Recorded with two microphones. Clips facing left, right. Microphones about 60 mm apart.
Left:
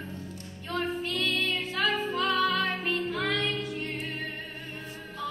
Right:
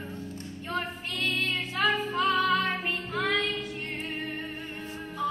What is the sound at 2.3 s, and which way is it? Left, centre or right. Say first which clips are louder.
Music: right 1 dB; centre.